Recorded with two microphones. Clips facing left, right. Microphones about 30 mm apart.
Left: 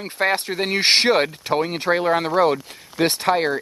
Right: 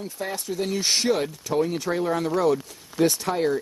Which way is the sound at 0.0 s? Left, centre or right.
Left.